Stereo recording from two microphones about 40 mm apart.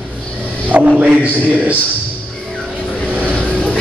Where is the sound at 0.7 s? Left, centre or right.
Right.